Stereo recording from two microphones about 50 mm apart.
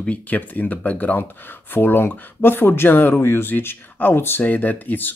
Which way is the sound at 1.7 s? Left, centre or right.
Left.